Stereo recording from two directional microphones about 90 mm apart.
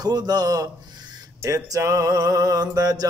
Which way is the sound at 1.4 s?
35° right (ahead or behind).